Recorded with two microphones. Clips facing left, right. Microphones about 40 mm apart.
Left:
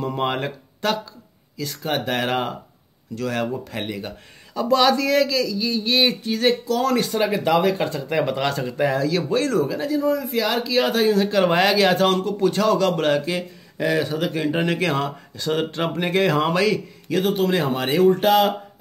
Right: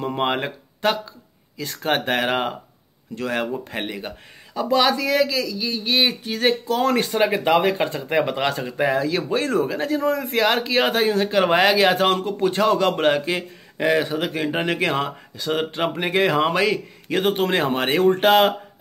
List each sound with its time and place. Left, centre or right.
0.0 s speech: right
1.6 s a man's voice: right
2.0 s a man's voice: right
6.2 s a man's voice: right
9.8 s a man's voice: right